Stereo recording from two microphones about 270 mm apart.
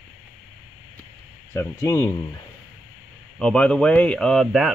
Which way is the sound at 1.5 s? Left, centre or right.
Centre.